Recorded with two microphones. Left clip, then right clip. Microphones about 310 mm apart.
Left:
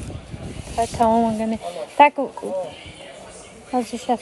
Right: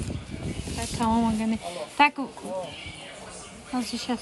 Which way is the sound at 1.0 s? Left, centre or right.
Centre.